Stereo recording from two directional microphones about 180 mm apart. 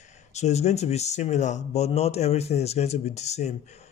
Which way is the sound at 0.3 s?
40° left (ahead or behind).